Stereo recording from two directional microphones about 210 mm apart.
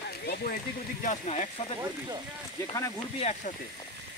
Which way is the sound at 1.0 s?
35° left (ahead or behind).